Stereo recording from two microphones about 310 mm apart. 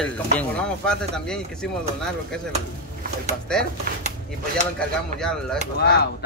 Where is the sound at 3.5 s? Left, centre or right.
Centre.